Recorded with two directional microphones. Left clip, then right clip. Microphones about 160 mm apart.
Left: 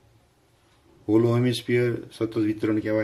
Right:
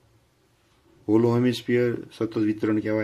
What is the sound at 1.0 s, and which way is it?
Speech, 30° right (ahead or behind).